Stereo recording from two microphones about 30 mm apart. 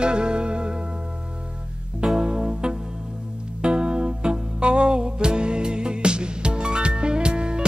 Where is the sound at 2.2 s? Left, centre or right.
Right.